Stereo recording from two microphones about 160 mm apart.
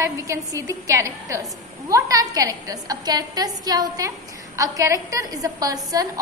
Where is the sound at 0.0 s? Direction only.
20° right (ahead or behind).